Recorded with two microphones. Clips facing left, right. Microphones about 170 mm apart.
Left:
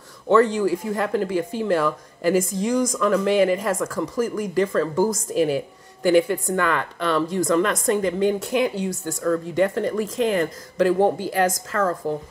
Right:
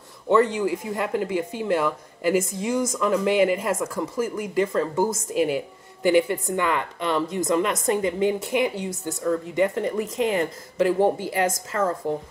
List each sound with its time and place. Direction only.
0.3 s speech: 20° right (ahead or behind)